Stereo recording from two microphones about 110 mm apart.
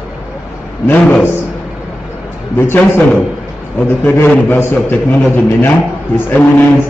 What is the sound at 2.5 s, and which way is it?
Speech, 20° left (ahead or behind).